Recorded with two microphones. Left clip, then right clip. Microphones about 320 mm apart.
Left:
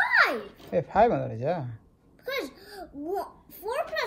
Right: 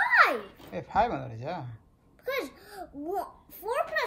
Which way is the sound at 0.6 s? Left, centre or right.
Centre.